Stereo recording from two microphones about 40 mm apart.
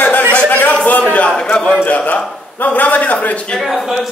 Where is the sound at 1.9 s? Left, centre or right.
Left.